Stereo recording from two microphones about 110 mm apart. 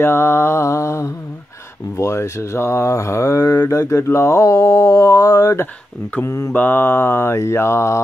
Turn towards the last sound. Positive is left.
turn(degrees=25)  # may be behind; listen again after turning